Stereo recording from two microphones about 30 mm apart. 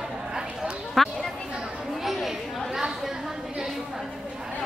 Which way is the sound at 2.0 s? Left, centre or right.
Centre.